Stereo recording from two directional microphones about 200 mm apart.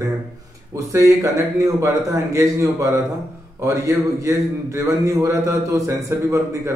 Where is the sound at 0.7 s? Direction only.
15° right (ahead or behind).